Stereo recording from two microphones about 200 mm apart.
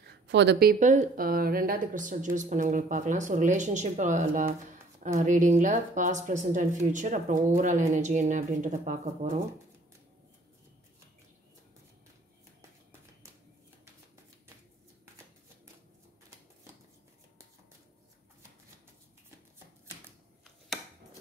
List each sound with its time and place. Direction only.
0.0 s speech: 60° right (ahead or behind); by 9.4 s 40° right (ahead or behind)